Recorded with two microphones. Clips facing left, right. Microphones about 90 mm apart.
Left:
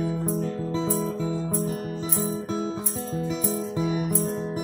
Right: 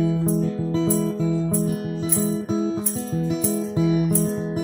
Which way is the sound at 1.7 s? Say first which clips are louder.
Right 4 dB; 5° right (ahead or behind).